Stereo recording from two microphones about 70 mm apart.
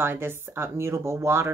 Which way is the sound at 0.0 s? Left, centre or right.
Right.